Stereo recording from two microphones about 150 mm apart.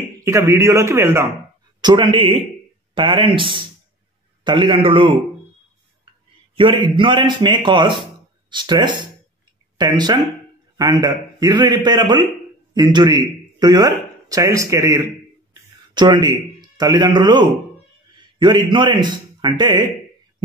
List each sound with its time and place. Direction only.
0.2 s a man's voice: 20° right (ahead or behind)
1.8 s a man's voice: 30° right (ahead or behind)
6.5 s a man's voice: 35° right (ahead or behind)